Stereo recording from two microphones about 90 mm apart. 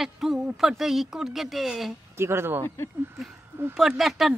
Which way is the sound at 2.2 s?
25° right (ahead or behind).